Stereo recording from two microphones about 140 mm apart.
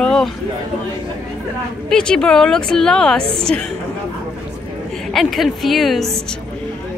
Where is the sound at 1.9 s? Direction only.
5° left (ahead or behind).